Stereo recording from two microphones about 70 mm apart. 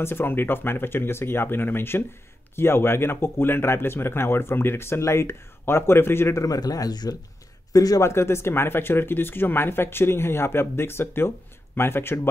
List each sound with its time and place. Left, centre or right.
0.0 s speech: left
6.4 s speech: left
8.0 s speech: left